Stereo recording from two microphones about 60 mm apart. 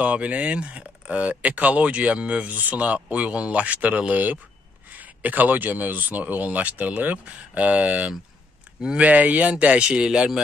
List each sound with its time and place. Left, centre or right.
0.0 s speech: right